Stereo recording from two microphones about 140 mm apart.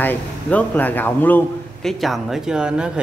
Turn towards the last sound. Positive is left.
turn(degrees=-5)  # may be behind; listen again after turning